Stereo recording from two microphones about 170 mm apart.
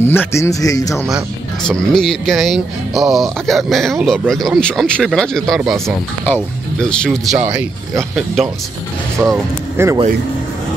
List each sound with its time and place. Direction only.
0.0 s a man's voice: 15° left (ahead or behind)
1.1 s speech: centre (ahead or behind)
7.3 s speech: 10° right (ahead or behind)
9.2 s speech: 5° right (ahead or behind)